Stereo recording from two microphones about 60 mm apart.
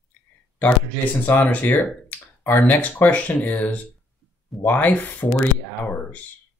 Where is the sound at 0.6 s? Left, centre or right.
Left.